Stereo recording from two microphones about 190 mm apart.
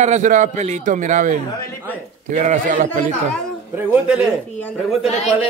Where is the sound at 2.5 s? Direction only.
40° right (ahead or behind).